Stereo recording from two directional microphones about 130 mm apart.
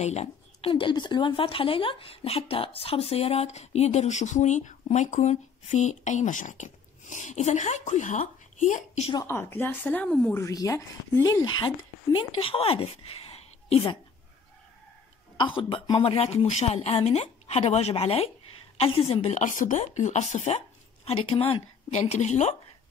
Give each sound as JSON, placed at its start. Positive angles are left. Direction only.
{"t": 0.0, "sound": "a woman's voice", "side_deg": 55}
{"t": 0.7, "sound": "speech", "side_deg": 40}
{"t": 9.2, "sound": "speech", "side_deg": 20}
{"t": 10.3, "sound": "speech", "side_deg": 25}
{"t": 15.4, "sound": "speech", "side_deg": 40}